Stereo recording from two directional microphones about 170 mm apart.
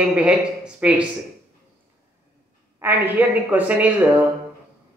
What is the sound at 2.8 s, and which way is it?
Speech, 10° right (ahead or behind).